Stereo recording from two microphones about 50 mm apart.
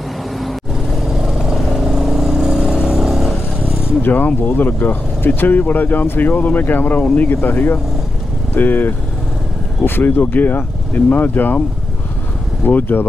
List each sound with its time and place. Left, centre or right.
1.0 s vehicle: centre
4.0 s speech: left
12.6 s speech: left